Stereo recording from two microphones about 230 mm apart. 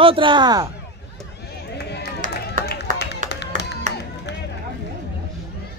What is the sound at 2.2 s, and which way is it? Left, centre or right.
Run, right.